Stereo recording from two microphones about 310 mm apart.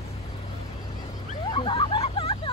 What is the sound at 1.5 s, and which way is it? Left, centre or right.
Hubbub, centre.